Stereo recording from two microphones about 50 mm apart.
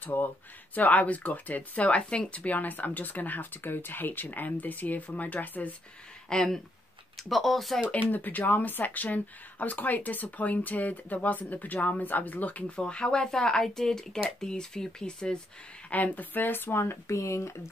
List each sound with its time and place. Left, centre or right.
0.0 s speech: left
6.2 s speech: centre
7.2 s speech: centre
7.9 s speech: left; by 15.3 s centre
15.9 s speech: left